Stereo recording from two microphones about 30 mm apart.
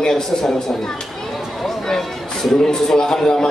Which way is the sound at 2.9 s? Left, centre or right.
Centre.